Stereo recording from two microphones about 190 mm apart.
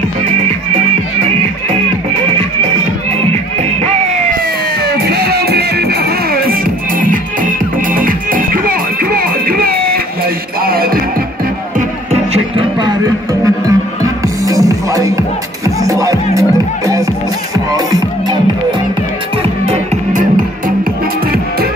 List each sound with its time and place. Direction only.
3.8 s music: 35° right (ahead or behind)
4.8 s music: 55° right (ahead or behind)
12.1 s music: 25° right (ahead or behind)
19.6 s music: 35° right (ahead or behind)